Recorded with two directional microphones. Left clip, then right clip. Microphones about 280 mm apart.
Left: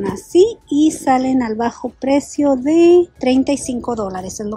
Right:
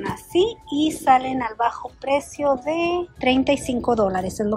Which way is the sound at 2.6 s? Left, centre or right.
Left.